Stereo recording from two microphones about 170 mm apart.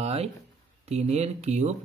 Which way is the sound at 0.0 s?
40° right (ahead or behind).